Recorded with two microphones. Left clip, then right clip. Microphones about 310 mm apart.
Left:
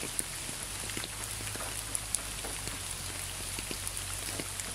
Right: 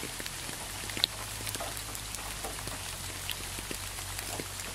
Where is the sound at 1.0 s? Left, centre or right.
Right.